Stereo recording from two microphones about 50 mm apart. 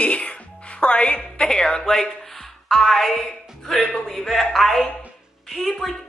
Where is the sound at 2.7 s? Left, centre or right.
Centre.